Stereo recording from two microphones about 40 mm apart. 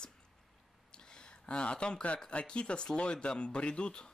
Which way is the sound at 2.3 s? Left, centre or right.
Left.